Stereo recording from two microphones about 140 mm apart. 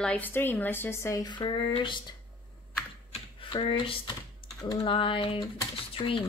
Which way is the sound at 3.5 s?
40° left (ahead or behind).